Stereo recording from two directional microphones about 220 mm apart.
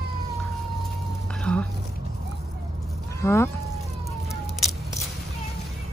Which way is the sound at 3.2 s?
10° left (ahead or behind).